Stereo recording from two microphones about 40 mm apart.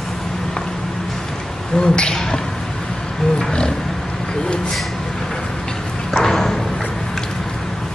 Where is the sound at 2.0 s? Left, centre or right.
Centre.